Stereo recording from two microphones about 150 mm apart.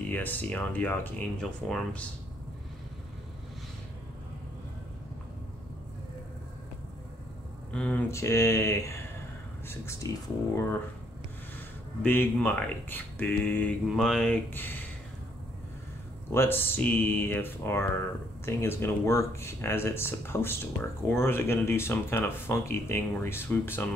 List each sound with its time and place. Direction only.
0.0 s speech: 10° left (ahead or behind)
7.7 s speech: 10° left (ahead or behind)
8.1 s speech: 20° left (ahead or behind)
10.0 s speech: 20° left (ahead or behind)
12.0 s speech: 15° left (ahead or behind)
16.3 s speech: 15° left (ahead or behind)